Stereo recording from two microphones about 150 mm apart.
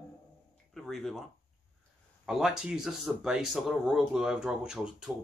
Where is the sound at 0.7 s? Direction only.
Centre (ahead or behind).